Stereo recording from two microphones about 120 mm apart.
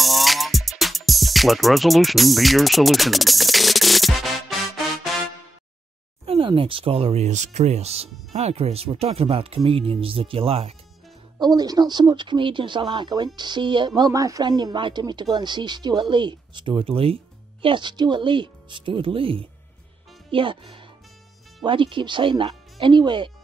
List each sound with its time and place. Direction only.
0.0 s music: centre (ahead or behind)
6.2 s speech: 45° right (ahead or behind)
11.3 s speech: 35° right (ahead or behind)